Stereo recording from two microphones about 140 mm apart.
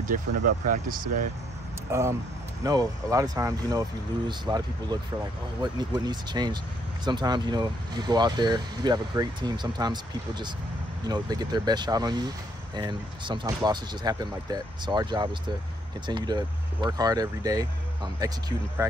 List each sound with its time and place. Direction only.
0.0 s speech: 75° right (ahead or behind)
1.9 s speech: 20° right (ahead or behind)
11.1 s speech: 30° right (ahead or behind)